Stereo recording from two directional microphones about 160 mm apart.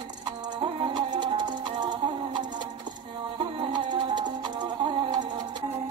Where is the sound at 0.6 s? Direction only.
30° right (ahead or behind).